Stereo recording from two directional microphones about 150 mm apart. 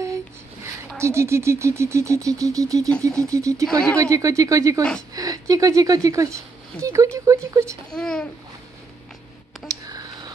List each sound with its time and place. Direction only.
0.9 s speech: 20° right (ahead or behind)
7.9 s speech: 5° left (ahead or behind)
9.7 s a sound: 25° right (ahead or behind)